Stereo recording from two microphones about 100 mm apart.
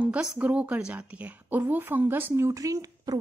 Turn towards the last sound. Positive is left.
turn(degrees=-35)  # may be behind; listen again after turning